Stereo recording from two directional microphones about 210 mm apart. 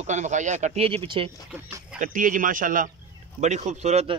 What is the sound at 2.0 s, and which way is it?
Speech, 40° right (ahead or behind).